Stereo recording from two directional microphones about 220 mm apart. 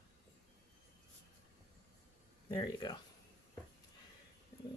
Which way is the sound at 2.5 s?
20° left (ahead or behind).